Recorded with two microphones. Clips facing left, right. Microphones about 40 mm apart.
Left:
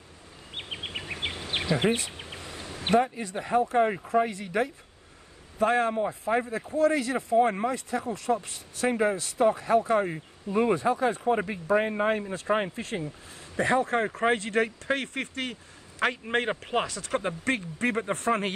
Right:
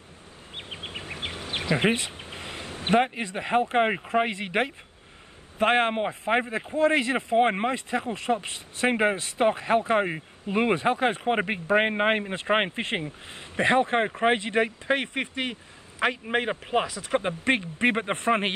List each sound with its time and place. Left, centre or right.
0.7 s a sound: left
1.7 s a man's voice: right
16.0 s a man's voice: centre
17.0 s speech: right
17.7 s a man's voice: right